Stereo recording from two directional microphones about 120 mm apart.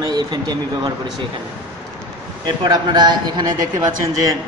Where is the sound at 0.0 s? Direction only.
35° right (ahead or behind).